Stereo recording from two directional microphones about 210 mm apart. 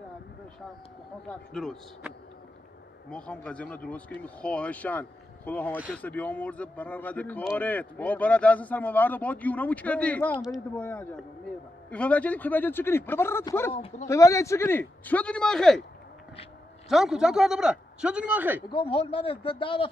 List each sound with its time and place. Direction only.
1.5 s a man's voice: centre (ahead or behind)
13.7 s a man's voice: 30° left (ahead or behind)
14.0 s speech: 15° left (ahead or behind)
16.9 s a man's voice: centre (ahead or behind)
18.7 s a man's voice: 25° left (ahead or behind)